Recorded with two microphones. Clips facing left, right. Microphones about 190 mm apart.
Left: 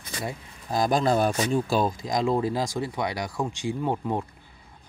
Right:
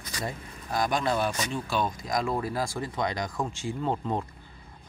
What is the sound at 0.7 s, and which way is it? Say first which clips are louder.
Speech: left 4 dB; 35° left (ahead or behind).